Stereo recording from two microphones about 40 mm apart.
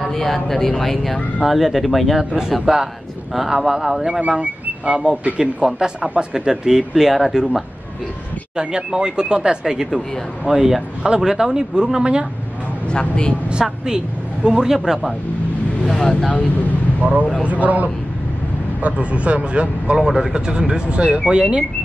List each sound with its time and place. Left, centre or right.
0.1 s speech: centre
1.4 s speech: centre
2.5 s speech: centre
4.2 s speech: right
5.4 s speech: centre
8.5 s speech: right
13.0 s a woman's voice: left
13.5 s speech: centre
15.8 s vehicle: centre
16.3 s speech: left
17.0 s speech: right
20.0 s speech: centre